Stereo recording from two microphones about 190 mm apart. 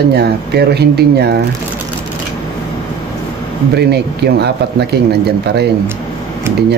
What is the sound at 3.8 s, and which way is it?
Speech, 60° right (ahead or behind).